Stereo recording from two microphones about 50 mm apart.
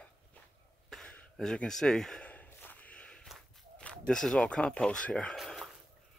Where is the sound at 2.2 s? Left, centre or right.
Left.